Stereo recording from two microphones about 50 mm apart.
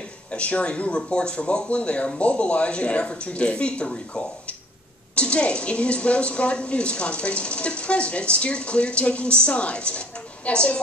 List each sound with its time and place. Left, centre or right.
0.3 s speech: left